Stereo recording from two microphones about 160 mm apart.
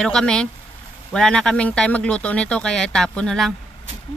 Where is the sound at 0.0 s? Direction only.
5° left (ahead or behind).